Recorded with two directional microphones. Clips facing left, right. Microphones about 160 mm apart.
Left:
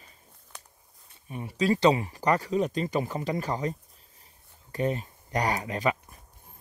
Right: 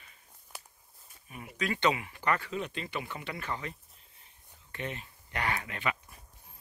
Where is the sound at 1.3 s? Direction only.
30° left (ahead or behind).